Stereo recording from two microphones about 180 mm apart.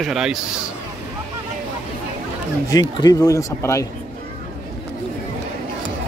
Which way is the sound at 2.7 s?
20° left (ahead or behind).